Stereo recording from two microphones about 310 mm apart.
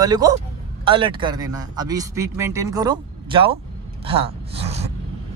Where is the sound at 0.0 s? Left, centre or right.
Centre.